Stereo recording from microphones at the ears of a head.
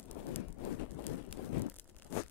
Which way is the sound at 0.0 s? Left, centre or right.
Left.